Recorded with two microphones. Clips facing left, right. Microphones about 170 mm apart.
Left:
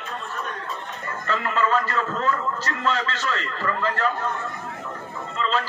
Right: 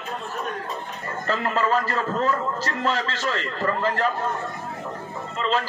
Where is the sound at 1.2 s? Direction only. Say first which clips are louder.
Even; 35° right (ahead or behind).